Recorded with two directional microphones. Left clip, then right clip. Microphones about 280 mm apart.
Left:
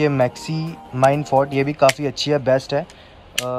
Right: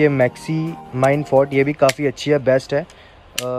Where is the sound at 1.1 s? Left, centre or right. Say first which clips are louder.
Right 3 dB; left.